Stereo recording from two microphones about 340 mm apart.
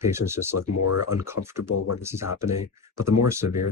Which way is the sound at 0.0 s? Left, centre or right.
Centre.